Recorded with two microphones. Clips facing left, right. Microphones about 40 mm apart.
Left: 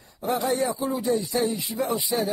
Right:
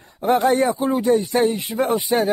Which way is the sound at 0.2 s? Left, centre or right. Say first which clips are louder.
Right 8 dB; right.